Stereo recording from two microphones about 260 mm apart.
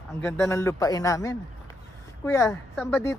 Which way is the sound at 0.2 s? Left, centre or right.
Centre.